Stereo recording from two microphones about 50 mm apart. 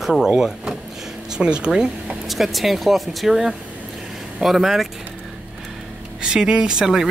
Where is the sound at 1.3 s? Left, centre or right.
Centre.